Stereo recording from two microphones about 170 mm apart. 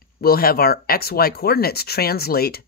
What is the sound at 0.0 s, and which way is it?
Speech, 60° left (ahead or behind).